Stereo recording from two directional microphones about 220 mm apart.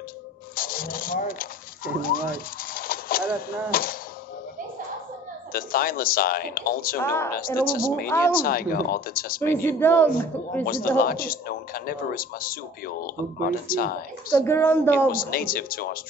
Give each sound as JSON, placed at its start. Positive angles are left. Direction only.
{"t": 0.6, "sound": "a sound", "side_deg": 40}
{"t": 3.3, "sound": "a man's voice", "side_deg": 40}
{"t": 5.5, "sound": "a man's voice", "side_deg": 40}
{"t": 7.0, "sound": "a man's voice", "side_deg": 10}
{"t": 7.6, "sound": "a man's voice", "side_deg": 40}
{"t": 9.5, "sound": "a man's voice", "side_deg": 10}
{"t": 10.6, "sound": "a man's voice", "side_deg": 40}
{"t": 14.3, "sound": "a man's voice", "side_deg": 10}
{"t": 15.0, "sound": "a man's voice", "side_deg": 40}